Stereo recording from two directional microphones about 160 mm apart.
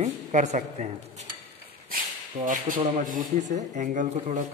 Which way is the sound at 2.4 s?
55° right (ahead or behind).